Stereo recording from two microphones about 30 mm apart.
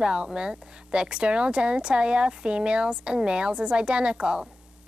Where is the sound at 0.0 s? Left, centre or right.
Right.